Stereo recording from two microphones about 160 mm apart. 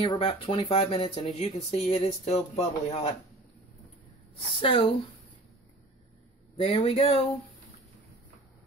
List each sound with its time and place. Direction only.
0.0 s speech: 30° left (ahead or behind)
4.6 s speech: 35° left (ahead or behind)
6.5 s speech: 35° left (ahead or behind)